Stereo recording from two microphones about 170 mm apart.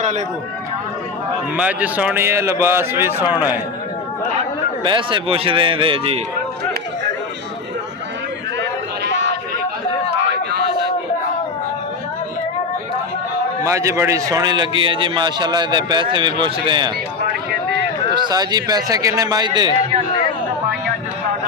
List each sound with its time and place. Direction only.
1.6 s speech: 10° right (ahead or behind)
4.8 s a man's voice: 30° right (ahead or behind)
8.5 s a sound: 90° right
10.3 s a sound: 75° right (ahead or behind)
13.7 s a man's voice: 15° right (ahead or behind)
18.1 s a man's voice: 25° right (ahead or behind)